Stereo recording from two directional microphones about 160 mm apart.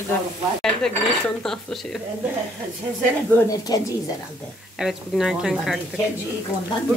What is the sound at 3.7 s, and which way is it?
Speech, 25° left (ahead or behind).